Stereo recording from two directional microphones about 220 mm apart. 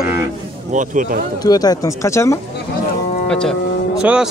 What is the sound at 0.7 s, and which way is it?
Speech, 35° right (ahead or behind).